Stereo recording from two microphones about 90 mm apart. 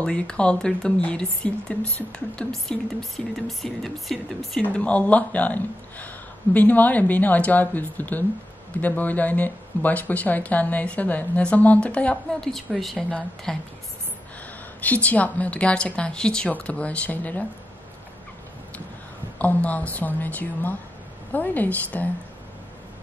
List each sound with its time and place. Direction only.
0.0 s speech: 10° left (ahead or behind)
4.6 s a woman's voice: 15° left (ahead or behind)
14.8 s speech: 15° left (ahead or behind)
19.3 s a woman's voice: 15° left (ahead or behind)